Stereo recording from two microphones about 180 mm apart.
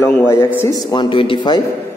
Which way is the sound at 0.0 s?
15° left (ahead or behind).